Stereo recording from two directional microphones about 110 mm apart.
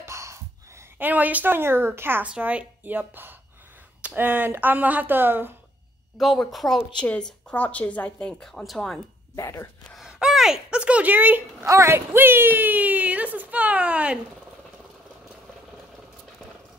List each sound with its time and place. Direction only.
0.0 s a sound: 25° right (ahead or behind)
0.9 s speech: 15° right (ahead or behind)
6.1 s a woman's voice: centre (ahead or behind)
9.3 s speech: 30° left (ahead or behind)
10.0 s speech: 5° right (ahead or behind)
11.6 s speech: 25° right (ahead or behind); by 14.2 s 10° right (ahead or behind)